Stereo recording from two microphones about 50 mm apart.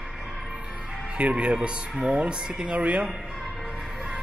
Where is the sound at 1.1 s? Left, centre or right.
Right.